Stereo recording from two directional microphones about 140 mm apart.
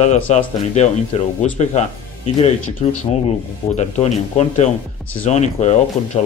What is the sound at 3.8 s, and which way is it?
Speech, 55° left (ahead or behind).